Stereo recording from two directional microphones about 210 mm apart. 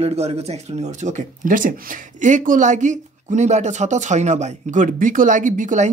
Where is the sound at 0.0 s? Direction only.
30° right (ahead or behind).